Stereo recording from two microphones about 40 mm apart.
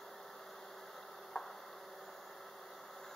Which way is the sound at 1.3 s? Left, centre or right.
Left.